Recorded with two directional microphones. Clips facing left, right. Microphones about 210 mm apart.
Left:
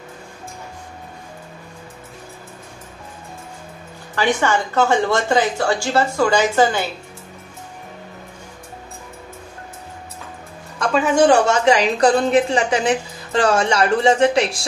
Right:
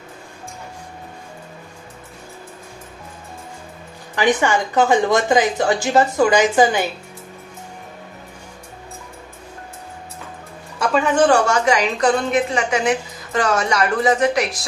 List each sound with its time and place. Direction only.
4.1 s a woman's voice: 15° right (ahead or behind)
10.8 s a woman's voice: centre (ahead or behind)
11.4 s a woman's voice: 25° left (ahead or behind)